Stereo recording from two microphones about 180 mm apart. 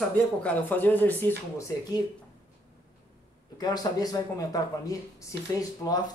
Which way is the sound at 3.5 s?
20° left (ahead or behind).